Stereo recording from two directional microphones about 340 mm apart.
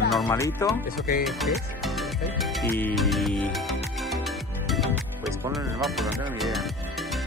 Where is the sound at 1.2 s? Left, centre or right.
Centre.